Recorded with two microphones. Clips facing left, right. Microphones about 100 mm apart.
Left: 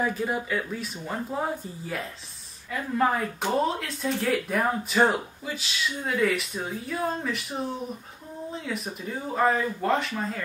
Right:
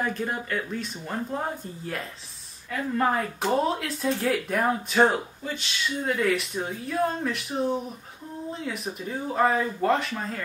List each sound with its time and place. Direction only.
0.0 s speech: 5° left (ahead or behind)
3.0 s speech: centre (ahead or behind)
8.6 s speech: centre (ahead or behind)